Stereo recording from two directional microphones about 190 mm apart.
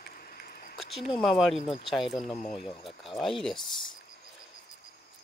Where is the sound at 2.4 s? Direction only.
35° left (ahead or behind).